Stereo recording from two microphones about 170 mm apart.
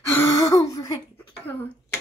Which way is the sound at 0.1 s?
15° left (ahead or behind).